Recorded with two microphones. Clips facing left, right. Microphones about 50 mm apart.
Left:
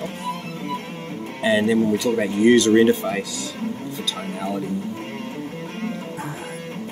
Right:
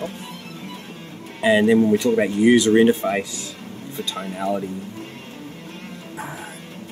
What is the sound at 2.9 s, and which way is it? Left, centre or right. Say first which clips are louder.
Speech: right 1 dB; centre.